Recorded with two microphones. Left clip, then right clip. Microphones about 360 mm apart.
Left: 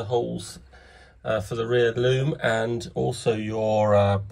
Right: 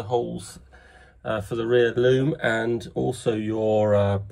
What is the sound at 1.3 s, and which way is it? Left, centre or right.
Speech, left.